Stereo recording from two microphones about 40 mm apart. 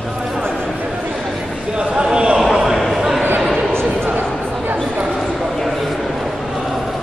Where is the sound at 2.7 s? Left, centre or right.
Centre.